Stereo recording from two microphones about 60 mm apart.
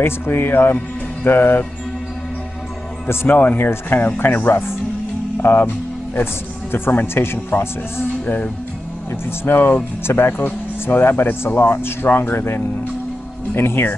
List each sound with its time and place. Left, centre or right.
0.0 s speech: left
3.1 s speech: left
6.7 s speech: left
9.4 s speech: left